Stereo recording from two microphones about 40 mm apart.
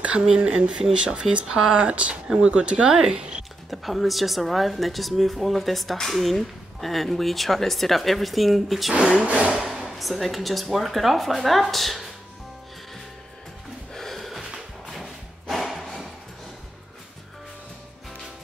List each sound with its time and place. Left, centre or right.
0.3 s speech: right
3.7 s speech: centre
8.9 s speech: right
9.2 s vehicle: right
9.7 s speech: centre
13.9 s snort: centre
14.9 s music: centre